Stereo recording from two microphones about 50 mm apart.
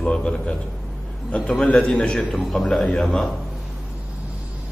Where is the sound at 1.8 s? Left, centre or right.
Left.